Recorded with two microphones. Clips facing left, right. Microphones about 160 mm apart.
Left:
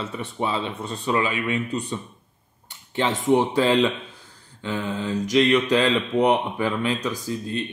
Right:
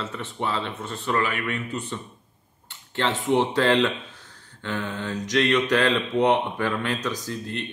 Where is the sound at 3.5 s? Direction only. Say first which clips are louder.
Left 1 dB; 10° left (ahead or behind).